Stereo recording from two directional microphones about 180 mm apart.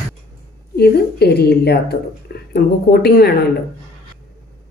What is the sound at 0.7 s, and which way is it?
Speech, 60° left (ahead or behind).